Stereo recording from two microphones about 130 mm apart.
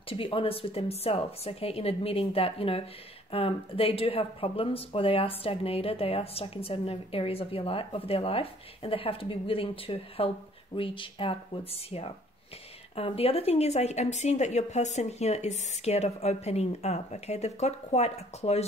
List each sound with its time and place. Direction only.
0.1 s speech: 45° left (ahead or behind)